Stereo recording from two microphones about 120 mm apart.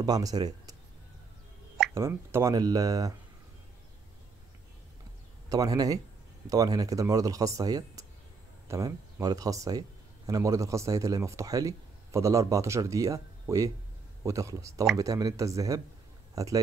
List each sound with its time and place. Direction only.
0.0 s speech: 35° right (ahead or behind)
2.0 s speech: 20° right (ahead or behind)
5.5 s speech: 30° right (ahead or behind)